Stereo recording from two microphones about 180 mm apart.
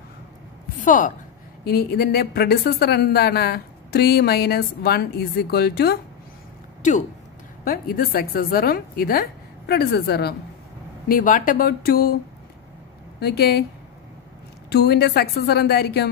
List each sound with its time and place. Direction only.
0.7 s a woman's voice: 45° left (ahead or behind)
1.6 s speech: 60° left (ahead or behind)
6.8 s speech: 45° left (ahead or behind)
7.6 s speech: 55° left (ahead or behind)
11.1 s speech: 50° left (ahead or behind)
13.2 s speech: 60° left (ahead or behind)
14.7 s speech: 65° left (ahead or behind)